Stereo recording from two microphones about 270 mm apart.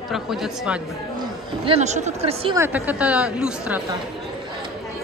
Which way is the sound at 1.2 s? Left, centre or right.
Right.